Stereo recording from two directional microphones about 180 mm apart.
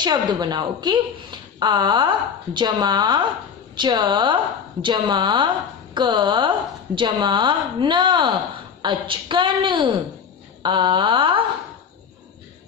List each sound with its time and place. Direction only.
0.0 s speech: 25° right (ahead or behind)